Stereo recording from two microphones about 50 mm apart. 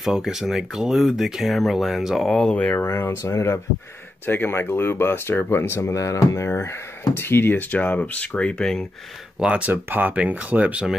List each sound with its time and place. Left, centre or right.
0.1 s speech: centre
2.5 s speech: left
2.8 s speech: left
3.3 s speech: left
4.3 s speech: left
7.2 s speech: left
9.4 s speech: centre
9.8 s speech: right
10.1 s speech: right